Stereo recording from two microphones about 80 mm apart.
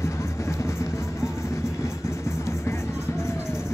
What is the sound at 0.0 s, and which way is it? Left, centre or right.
Music, left.